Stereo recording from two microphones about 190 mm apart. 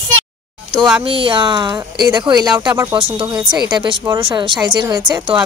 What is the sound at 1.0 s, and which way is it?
Speech, 30° right (ahead or behind).